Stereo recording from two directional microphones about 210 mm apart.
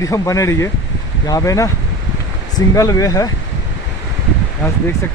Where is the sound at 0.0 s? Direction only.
15° left (ahead or behind).